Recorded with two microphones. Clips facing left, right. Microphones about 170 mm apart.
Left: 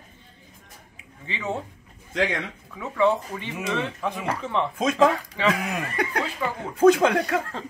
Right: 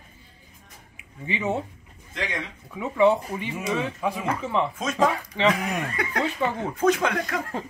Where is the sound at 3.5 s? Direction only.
Centre (ahead or behind).